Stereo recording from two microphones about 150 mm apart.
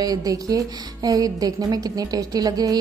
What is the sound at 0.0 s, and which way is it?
Speech, 25° right (ahead or behind).